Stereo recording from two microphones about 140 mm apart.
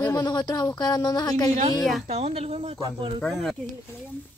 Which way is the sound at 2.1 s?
45° right (ahead or behind).